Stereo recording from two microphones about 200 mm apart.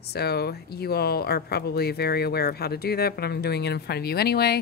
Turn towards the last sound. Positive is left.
turn(degrees=50)  # may be behind; listen again after turning